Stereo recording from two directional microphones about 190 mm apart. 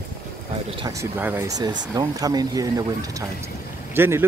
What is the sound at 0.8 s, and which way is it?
Speech, 15° right (ahead or behind).